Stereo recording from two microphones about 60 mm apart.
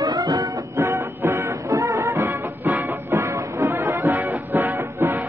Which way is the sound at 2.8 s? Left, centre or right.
Right.